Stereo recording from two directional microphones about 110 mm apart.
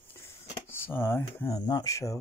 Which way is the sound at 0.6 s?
20° left (ahead or behind).